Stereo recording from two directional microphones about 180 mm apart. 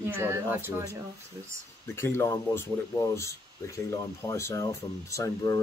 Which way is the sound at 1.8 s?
15° left (ahead or behind).